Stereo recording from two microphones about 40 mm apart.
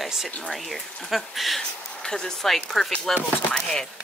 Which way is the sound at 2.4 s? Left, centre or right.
Centre.